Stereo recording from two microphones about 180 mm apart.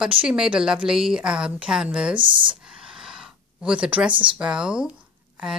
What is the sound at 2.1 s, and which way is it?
Speech, 25° right (ahead or behind).